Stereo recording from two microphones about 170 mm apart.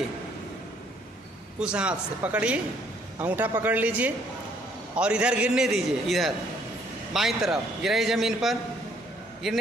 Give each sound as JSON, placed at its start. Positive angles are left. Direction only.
{"t": 1.6, "sound": "a man's voice", "side_deg": -5}